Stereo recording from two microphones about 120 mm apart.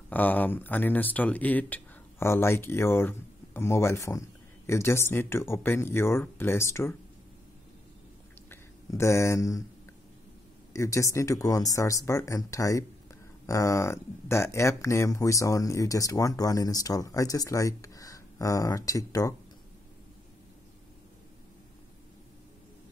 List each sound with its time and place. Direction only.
0.1 s speech: 15° left (ahead or behind)
8.5 s speech: 20° left (ahead or behind)
10.7 s speech: 25° left (ahead or behind)